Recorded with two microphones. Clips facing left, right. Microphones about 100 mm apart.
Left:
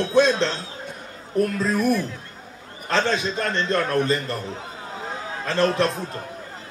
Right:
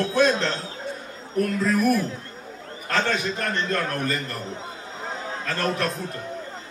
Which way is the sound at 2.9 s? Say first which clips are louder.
Left 2 dB; 25° left (ahead or behind).